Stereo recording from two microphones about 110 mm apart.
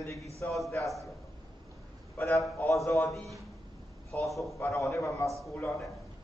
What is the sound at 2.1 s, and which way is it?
Speech, 25° left (ahead or behind).